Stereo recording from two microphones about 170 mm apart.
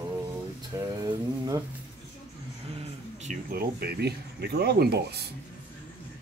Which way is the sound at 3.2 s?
55° right (ahead or behind).